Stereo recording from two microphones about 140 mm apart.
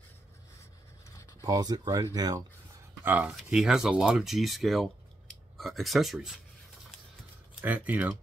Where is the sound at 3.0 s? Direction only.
10° right (ahead or behind).